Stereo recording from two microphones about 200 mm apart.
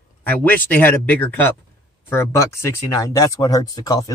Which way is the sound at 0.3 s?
10° left (ahead or behind).